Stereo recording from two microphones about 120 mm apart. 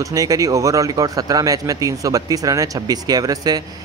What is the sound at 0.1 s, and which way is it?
Speech, 30° right (ahead or behind).